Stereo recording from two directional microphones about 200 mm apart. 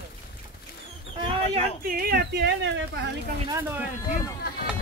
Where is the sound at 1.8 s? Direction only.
45° right (ahead or behind); by 2.8 s 60° right (ahead or behind).